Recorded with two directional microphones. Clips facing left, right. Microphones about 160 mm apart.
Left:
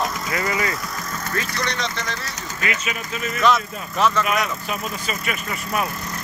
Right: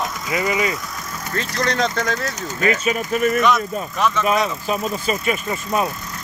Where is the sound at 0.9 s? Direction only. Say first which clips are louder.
Left 1 dB; 10° right (ahead or behind).